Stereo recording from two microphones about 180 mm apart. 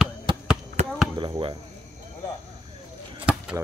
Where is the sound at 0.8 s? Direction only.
40° right (ahead or behind).